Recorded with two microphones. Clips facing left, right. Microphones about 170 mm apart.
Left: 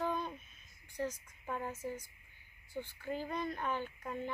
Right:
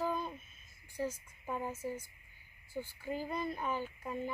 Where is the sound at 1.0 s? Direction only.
10° right (ahead or behind).